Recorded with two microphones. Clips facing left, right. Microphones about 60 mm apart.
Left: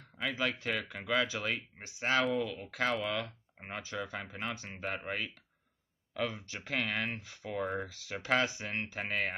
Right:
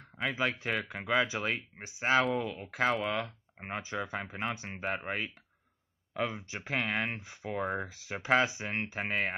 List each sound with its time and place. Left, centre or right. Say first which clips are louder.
0.0 s speech: right 2 dB; centre
6.1 s speech: right 2 dB; right
7.5 s speech: right 2 dB; centre
7.9 s speech: right 6 dB; right